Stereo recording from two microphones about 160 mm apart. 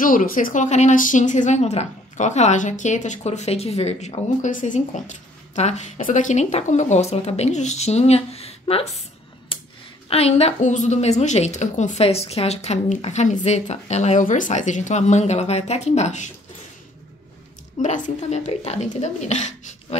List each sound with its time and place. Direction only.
0.0 s speech: 55° left (ahead or behind); by 9.0 s 40° left (ahead or behind)
10.0 s speech: 40° left (ahead or behind)
17.8 s speech: 50° left (ahead or behind)